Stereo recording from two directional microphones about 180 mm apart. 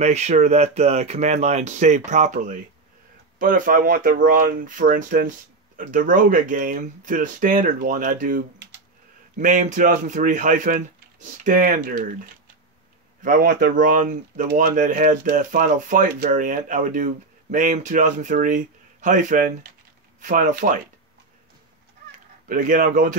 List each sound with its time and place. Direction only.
0.0 s speech: 40° right (ahead or behind)
13.2 s speech: 50° right (ahead or behind)
22.5 s speech: 50° right (ahead or behind)